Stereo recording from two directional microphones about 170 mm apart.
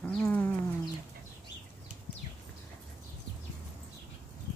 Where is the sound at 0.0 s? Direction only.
5° left (ahead or behind).